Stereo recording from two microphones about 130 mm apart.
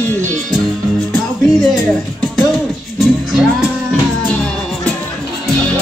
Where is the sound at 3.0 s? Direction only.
5° right (ahead or behind).